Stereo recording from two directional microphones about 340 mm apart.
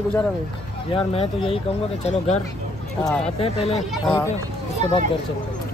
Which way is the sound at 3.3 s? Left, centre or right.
Centre.